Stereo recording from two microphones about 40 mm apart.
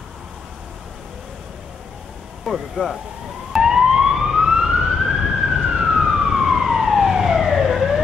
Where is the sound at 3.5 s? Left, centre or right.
Centre.